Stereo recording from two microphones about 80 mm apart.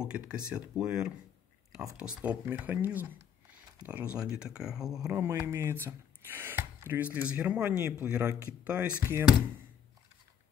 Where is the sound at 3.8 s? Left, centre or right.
Centre.